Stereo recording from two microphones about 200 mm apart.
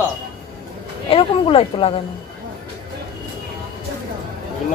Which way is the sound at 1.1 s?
25° left (ahead or behind).